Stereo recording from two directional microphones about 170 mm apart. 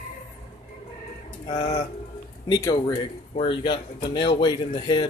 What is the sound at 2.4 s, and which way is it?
Speech, 25° left (ahead or behind).